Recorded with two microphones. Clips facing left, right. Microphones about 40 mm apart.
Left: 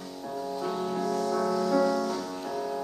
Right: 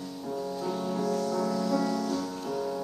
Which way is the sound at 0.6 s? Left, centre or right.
Left.